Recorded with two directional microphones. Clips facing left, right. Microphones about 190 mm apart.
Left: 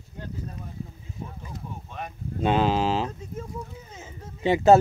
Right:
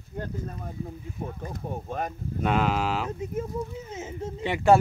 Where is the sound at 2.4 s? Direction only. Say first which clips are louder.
Left 3 dB; 25° left (ahead or behind).